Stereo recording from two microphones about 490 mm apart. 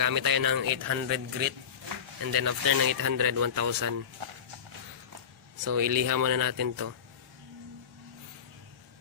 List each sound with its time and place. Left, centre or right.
0.0 s speech: right
5.6 s speech: right